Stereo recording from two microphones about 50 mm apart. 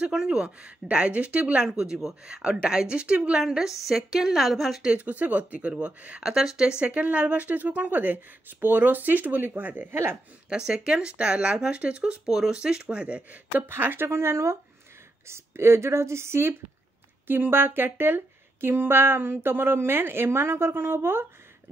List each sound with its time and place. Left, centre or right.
0.1 s speech: centre
1.7 s a woman's voice: centre
4.8 s speech: right
6.2 s speech: centre
6.8 s a woman's voice: right
10.5 s speech: centre
12.0 s speech: centre; by 13.7 s right
13.7 s speech: right
17.3 s speech: right